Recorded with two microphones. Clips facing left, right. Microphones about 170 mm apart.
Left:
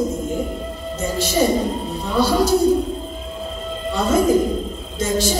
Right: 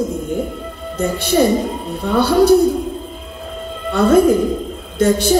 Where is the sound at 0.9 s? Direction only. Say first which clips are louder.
Right 4 dB; 60° right (ahead or behind).